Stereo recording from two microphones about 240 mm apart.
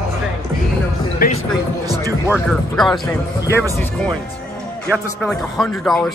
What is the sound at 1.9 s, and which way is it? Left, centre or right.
Music, centre.